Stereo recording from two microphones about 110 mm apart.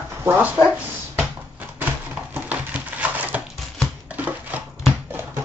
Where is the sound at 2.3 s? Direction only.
15° right (ahead or behind).